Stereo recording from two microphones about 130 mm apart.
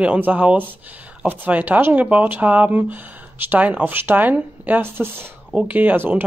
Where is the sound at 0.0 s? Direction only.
10° right (ahead or behind).